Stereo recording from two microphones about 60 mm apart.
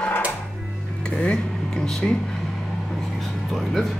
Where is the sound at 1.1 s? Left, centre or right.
Centre.